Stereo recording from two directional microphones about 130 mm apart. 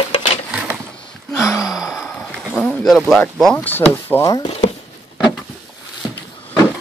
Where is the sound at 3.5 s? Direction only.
15° left (ahead or behind).